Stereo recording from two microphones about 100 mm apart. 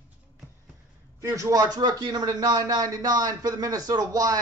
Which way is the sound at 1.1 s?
35° right (ahead or behind).